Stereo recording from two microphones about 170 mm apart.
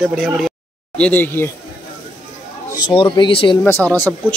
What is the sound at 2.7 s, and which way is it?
Speech, 30° left (ahead or behind).